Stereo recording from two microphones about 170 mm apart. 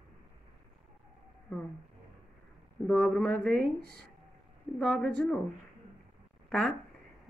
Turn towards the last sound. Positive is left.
turn(degrees=0)  # may be behind; listen again after turning